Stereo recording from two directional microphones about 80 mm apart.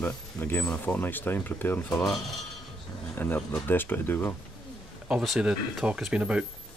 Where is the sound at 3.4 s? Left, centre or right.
Centre.